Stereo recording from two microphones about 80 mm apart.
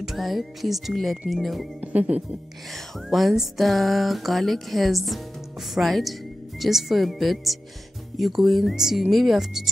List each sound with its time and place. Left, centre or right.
0.0 s speech: centre
1.8 s music: centre
3.1 s speech: centre